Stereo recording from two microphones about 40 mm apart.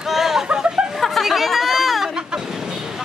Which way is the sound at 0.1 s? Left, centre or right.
Centre.